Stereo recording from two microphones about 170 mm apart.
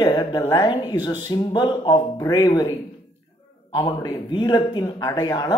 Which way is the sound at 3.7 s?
25° left (ahead or behind).